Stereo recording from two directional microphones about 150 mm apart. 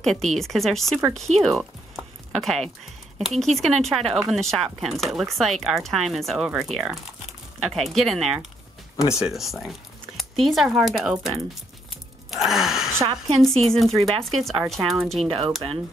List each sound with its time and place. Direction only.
0.0 s speech: 5° left (ahead or behind)
1.4 s music: centre (ahead or behind)
3.2 s speech: centre (ahead or behind)
8.9 s speech: 20° left (ahead or behind)
9.2 s speech: centre (ahead or behind)
12.9 s a woman's voice: 20° right (ahead or behind)
13.4 s speech: centre (ahead or behind)
15.2 s speech: 35° right (ahead or behind)